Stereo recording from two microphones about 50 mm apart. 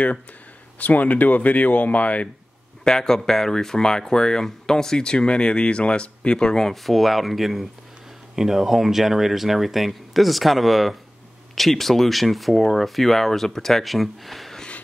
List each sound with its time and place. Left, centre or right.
0.7 s speech: left
2.8 s speech: centre
6.7 s speech: centre